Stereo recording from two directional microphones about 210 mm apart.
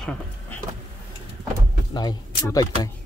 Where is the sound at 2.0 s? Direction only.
20° left (ahead or behind).